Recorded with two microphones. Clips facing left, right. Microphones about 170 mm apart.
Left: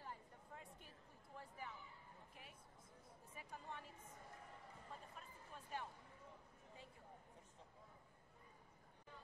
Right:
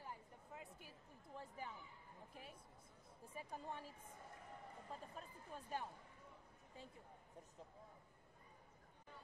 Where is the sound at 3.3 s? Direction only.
35° right (ahead or behind).